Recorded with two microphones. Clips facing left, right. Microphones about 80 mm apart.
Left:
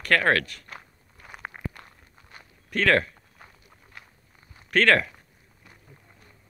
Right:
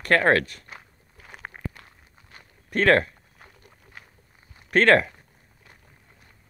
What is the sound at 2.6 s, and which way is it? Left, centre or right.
Speech, right.